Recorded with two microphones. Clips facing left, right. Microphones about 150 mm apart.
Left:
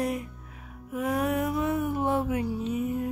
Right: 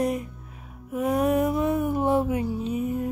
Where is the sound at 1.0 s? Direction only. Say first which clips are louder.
Right 5 dB; 20° right (ahead or behind).